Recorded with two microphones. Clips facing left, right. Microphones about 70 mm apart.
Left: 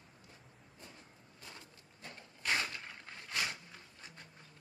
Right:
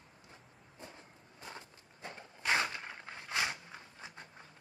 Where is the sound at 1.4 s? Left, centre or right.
Right.